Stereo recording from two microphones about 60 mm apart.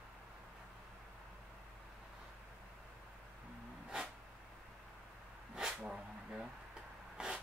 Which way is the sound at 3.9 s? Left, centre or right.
Centre.